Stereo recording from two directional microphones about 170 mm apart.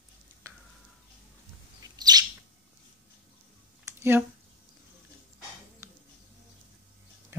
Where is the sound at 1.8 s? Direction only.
25° right (ahead or behind).